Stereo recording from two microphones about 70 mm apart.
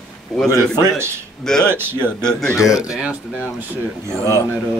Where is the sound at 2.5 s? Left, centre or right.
Left.